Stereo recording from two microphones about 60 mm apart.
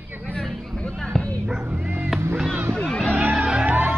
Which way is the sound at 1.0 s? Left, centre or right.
Centre.